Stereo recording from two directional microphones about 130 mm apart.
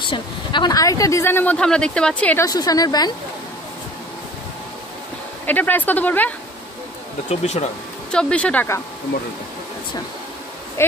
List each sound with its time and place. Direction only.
0.0 s speech: 40° left (ahead or behind); by 2.4 s 10° left (ahead or behind)
2.4 s speech: 30° left (ahead or behind)
5.5 s speech: 15° left (ahead or behind)
7.2 s speech: 60° left (ahead or behind)
8.1 s speech: 10° left (ahead or behind)
10.8 s speech: 20° left (ahead or behind)